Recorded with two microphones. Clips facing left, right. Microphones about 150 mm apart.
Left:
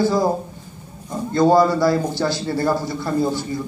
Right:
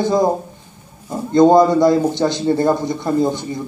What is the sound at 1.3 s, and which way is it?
A man's voice, 20° right (ahead or behind).